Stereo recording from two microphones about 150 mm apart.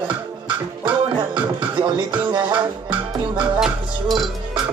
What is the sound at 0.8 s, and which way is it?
Music, 30° right (ahead or behind).